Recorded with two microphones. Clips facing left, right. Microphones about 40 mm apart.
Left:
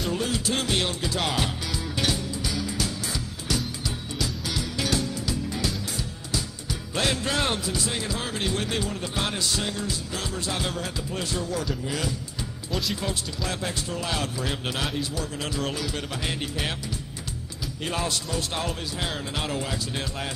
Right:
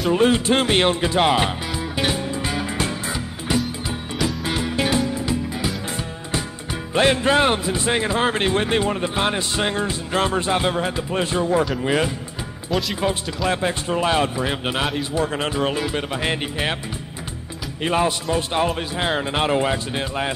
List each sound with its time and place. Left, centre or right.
0.1 s music: right
5.9 s music: right
13.0 s a man's voice: right
15.0 s music: right
17.8 s music: right